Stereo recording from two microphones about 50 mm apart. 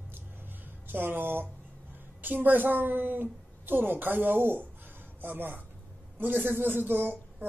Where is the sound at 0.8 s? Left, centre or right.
Right.